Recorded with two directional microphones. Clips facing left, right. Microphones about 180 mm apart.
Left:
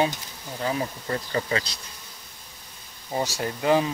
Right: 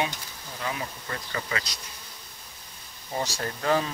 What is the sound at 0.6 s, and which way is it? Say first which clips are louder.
Bee: left 6 dB; 35° left (ahead or behind).